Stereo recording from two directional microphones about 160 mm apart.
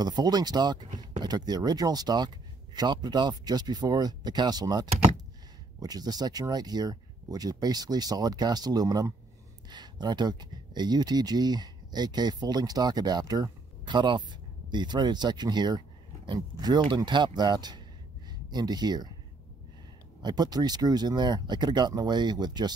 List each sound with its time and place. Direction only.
0.0 s speech: 25° right (ahead or behind)
20.2 s speech: 25° right (ahead or behind)